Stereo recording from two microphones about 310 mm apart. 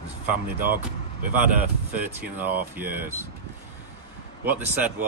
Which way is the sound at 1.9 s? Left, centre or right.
Centre.